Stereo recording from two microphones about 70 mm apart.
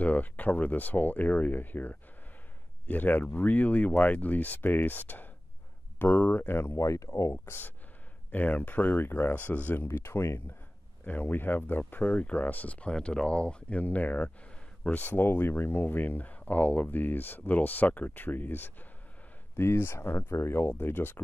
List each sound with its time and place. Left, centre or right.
0.0 s speech: left
6.8 s speech: left
7.4 s speech: left
9.8 s speech: left
11.1 s speech: left